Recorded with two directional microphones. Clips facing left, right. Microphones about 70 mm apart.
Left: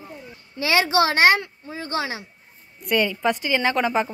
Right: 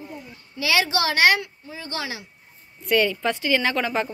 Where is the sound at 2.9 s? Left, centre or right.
Centre.